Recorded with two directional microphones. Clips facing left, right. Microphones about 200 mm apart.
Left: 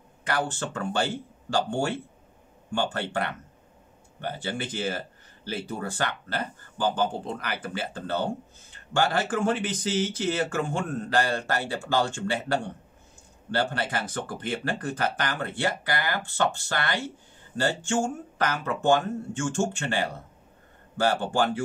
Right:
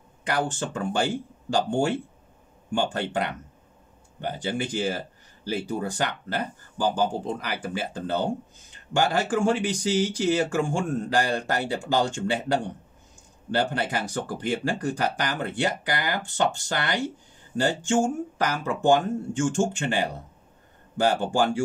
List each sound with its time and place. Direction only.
0.2 s speech: 15° right (ahead or behind)